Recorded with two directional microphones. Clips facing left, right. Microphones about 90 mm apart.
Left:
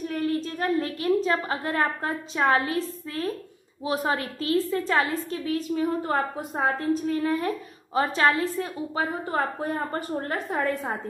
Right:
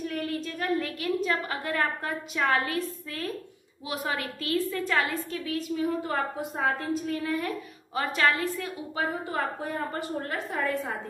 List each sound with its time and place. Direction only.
0.0 s a woman's voice: 35° left (ahead or behind)